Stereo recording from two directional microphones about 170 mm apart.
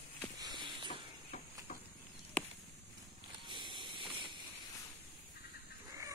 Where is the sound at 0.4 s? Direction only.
25° right (ahead or behind).